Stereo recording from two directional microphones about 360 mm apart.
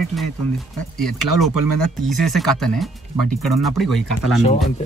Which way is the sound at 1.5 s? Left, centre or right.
Right.